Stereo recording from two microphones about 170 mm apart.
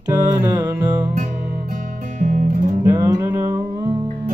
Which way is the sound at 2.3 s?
50° right (ahead or behind).